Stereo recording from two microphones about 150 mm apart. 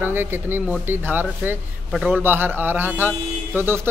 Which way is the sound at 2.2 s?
15° right (ahead or behind).